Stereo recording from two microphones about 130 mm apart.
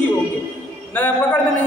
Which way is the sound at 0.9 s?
15° left (ahead or behind).